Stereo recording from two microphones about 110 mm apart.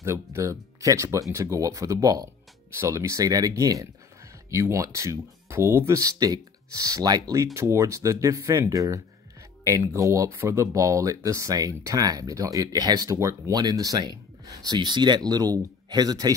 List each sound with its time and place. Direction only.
0.0 s speech: 25° right (ahead or behind)